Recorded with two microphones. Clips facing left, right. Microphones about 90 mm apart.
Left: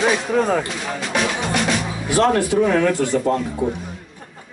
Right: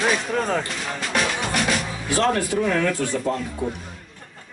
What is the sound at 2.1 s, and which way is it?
Speech, 15° left (ahead or behind).